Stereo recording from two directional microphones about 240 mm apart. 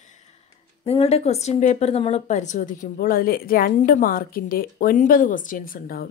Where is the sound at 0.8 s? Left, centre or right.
Left.